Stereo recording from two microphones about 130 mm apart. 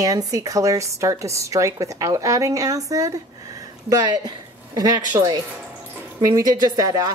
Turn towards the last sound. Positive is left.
turn(degrees=-30)  # may be behind; listen again after turning